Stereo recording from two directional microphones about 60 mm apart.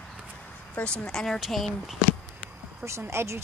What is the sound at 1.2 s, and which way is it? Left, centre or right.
Speech, centre.